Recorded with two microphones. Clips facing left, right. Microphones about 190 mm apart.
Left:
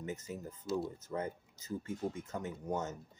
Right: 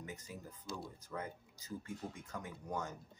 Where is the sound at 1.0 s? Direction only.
25° left (ahead or behind).